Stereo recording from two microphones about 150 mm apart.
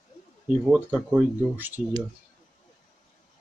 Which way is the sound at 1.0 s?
10° right (ahead or behind).